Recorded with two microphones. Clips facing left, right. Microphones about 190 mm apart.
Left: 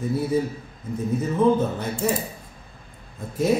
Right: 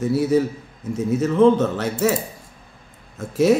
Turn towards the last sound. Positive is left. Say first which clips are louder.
# right 5 dB
turn(degrees=-80)